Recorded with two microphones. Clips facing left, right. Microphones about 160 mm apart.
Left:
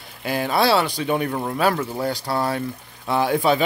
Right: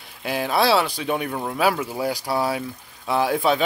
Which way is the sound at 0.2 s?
Centre (ahead or behind).